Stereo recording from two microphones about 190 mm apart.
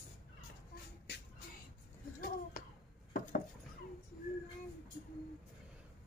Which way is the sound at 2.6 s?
45° left (ahead or behind).